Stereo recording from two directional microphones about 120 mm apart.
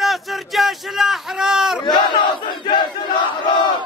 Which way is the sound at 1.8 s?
40° left (ahead or behind).